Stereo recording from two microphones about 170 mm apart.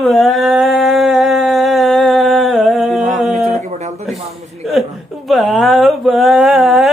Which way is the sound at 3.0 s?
45° right (ahead or behind).